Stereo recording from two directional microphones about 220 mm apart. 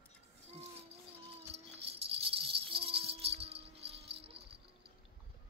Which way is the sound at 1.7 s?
25° right (ahead or behind).